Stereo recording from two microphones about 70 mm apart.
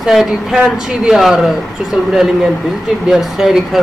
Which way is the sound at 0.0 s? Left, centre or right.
Centre.